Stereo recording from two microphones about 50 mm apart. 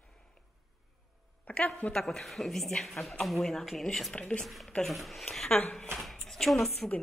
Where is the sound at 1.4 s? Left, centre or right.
Left.